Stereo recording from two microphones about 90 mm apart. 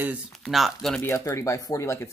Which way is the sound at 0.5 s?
Centre (ahead or behind).